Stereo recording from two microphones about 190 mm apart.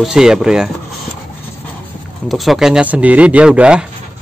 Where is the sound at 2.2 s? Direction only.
Centre (ahead or behind).